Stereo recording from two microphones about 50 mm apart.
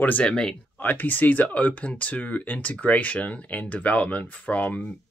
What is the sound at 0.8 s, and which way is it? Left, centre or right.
Speech, left.